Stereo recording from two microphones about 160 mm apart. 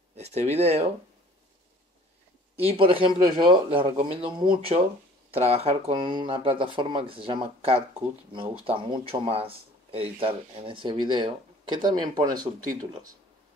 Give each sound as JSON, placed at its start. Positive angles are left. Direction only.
{"t": 0.1, "sound": "speech", "side_deg": -40}
{"t": 2.6, "sound": "speech", "side_deg": -35}